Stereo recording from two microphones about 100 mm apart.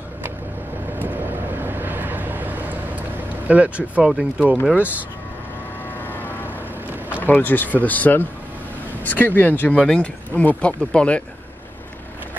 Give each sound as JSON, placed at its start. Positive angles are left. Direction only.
{"t": 1.0, "sound": "vehicle", "side_deg": -20}
{"t": 3.4, "sound": "speech", "side_deg": -15}
{"t": 4.1, "sound": "speech", "side_deg": -5}
{"t": 6.0, "sound": "vehicle", "side_deg": 20}
{"t": 7.2, "sound": "speech", "side_deg": 20}